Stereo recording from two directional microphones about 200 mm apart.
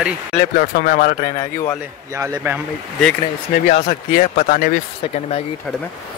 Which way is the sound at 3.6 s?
30° left (ahead or behind).